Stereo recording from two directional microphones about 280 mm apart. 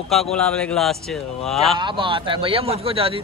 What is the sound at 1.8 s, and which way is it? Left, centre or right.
Speech, centre.